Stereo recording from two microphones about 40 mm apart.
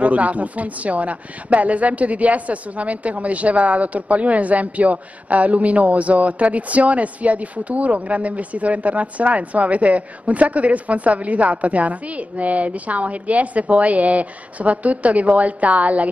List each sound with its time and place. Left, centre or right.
0.0 s a woman's voice: right